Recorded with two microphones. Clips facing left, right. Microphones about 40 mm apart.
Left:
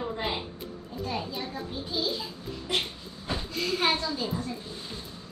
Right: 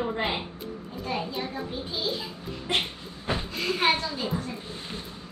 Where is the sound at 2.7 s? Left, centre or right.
Right.